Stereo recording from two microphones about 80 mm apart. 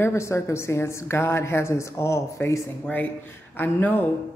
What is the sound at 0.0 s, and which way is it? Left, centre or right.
A woman's voice, left.